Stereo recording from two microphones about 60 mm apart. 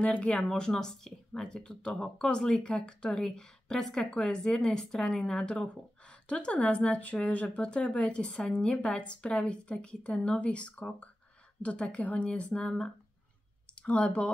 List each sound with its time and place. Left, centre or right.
0.0 s a woman's voice: left